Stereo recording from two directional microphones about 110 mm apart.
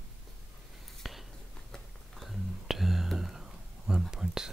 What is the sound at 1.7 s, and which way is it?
Whispering, centre (ahead or behind).